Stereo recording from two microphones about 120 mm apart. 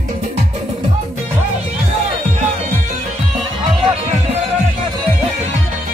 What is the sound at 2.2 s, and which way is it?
Music, 85° right.